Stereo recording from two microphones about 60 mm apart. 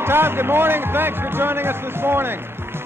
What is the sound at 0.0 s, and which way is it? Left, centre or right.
Speech, right.